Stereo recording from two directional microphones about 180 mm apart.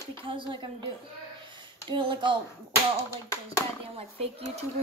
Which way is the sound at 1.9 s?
25° right (ahead or behind).